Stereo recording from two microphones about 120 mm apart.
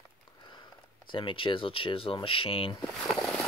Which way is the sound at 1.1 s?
45° left (ahead or behind).